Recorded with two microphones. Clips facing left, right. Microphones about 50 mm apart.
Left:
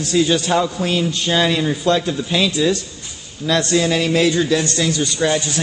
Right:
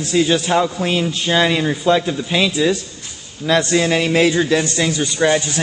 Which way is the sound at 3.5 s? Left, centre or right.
Right.